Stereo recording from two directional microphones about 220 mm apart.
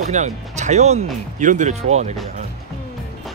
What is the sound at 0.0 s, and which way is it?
Speech, 30° right (ahead or behind).